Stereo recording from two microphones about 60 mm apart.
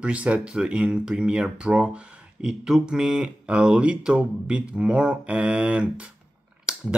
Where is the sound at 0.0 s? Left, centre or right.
Right.